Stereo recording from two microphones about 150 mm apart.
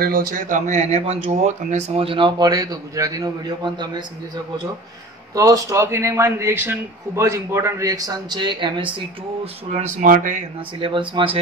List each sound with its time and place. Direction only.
0.0 s speech: 75° right (ahead or behind); by 4.0 s 30° right (ahead or behind)
5.3 s a man's voice: 25° right (ahead or behind)
9.7 s speech: 50° right (ahead or behind)
10.8 s speech: 35° right (ahead or behind)